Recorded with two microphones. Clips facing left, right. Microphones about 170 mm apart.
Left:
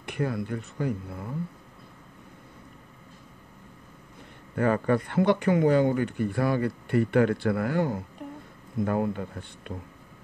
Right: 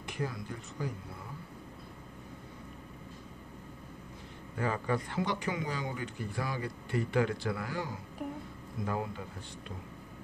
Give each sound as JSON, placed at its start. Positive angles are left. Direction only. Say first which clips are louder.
{"t": 0.0, "sound": "speech", "louder": "left 8 dB", "side_deg": 60}
{"t": 4.6, "sound": "speech", "louder": "left 9 dB", "side_deg": 60}
{"t": 8.2, "sound": "a sound", "louder": "right 1 dB", "side_deg": -5}
{"t": 8.8, "sound": "speech", "louder": "left 9 dB", "side_deg": 55}